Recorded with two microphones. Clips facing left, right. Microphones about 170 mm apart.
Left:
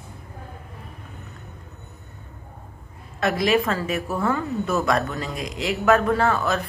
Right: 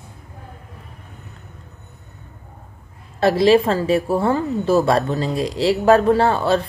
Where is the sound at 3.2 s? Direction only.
30° right (ahead or behind).